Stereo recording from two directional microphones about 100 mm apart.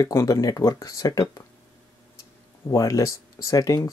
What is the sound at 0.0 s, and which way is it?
Speech, 35° left (ahead or behind).